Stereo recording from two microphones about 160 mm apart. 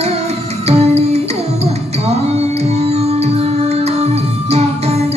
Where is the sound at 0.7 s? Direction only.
40° right (ahead or behind).